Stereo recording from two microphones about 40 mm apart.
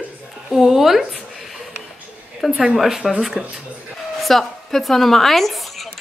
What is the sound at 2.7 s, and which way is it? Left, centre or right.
Speech, centre.